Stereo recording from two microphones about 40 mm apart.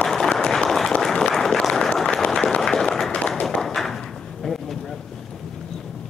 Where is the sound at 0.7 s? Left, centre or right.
Centre.